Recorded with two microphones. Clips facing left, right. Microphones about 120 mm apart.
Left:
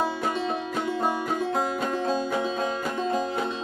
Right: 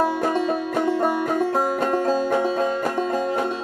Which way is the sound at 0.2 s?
50° right (ahead or behind).